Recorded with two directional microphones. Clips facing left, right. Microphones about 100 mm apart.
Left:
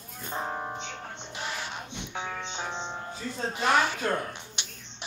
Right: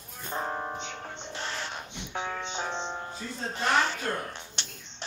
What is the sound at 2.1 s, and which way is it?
Music, centre (ahead or behind).